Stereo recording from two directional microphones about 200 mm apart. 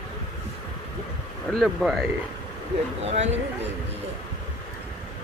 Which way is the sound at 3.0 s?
35° right (ahead or behind).